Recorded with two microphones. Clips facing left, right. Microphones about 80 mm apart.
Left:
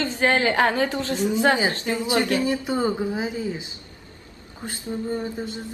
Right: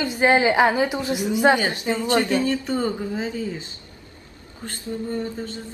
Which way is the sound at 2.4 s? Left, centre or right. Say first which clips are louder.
Even; centre.